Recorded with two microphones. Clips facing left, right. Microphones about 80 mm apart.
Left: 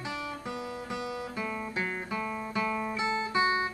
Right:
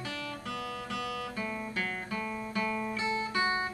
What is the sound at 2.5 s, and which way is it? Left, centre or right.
Guitar, centre.